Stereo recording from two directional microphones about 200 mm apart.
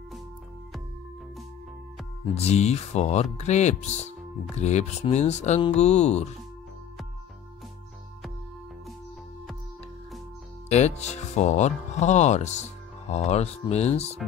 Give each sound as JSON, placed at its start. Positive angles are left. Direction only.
{"t": 2.3, "sound": "speech", "side_deg": 35}
{"t": 10.7, "sound": "speech", "side_deg": 35}